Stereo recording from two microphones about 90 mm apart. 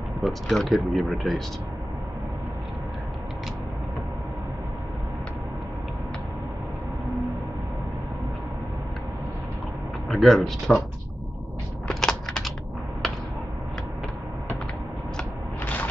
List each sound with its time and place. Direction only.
0.2 s speech: 5° left (ahead or behind)
10.0 s speech: 5° left (ahead or behind)
11.9 s typing: 5° left (ahead or behind)
15.6 s a sound: 20° left (ahead or behind)